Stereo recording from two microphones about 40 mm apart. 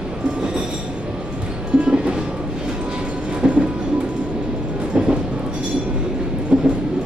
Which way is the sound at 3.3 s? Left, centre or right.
Right.